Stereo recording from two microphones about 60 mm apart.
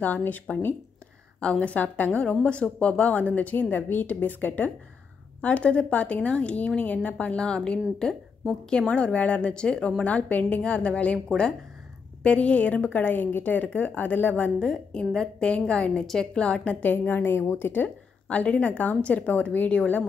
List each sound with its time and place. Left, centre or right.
0.0 s a woman's voice: left
12.2 s a woman's voice: centre
14.6 s a woman's voice: centre; by 17.8 s left
17.8 s a woman's voice: left